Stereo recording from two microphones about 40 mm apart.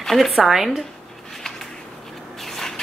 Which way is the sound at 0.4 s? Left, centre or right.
Centre.